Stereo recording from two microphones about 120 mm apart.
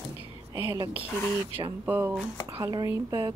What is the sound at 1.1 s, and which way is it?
Speech, 15° left (ahead or behind).